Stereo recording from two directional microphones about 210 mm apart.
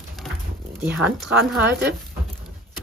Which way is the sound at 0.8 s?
5° right (ahead or behind).